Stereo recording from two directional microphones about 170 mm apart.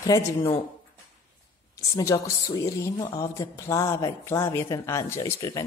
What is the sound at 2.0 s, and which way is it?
Speech, 20° left (ahead or behind).